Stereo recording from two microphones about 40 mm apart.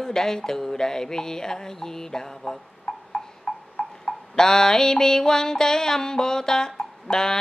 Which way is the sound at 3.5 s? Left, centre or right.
Left.